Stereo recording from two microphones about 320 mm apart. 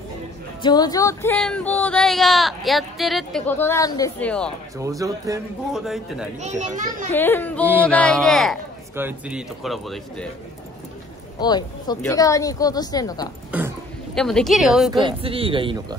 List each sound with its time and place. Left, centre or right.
0.6 s speech: centre
4.7 s a man's voice: centre
6.4 s a child's voice: right
7.1 s a woman's voice: centre
11.3 s a woman's voice: centre
13.5 s speech: centre
14.9 s a man's voice: centre